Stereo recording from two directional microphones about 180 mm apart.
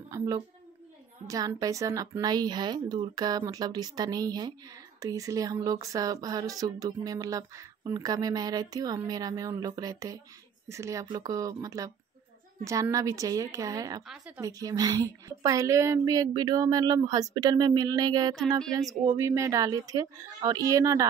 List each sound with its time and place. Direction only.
0.1 s a child's voice: 20° right (ahead or behind)
14.0 s speech: 5° right (ahead or behind)
14.4 s a woman's voice: 20° right (ahead or behind)
18.6 s speech: centre (ahead or behind)
19.0 s a woman's voice: 15° right (ahead or behind)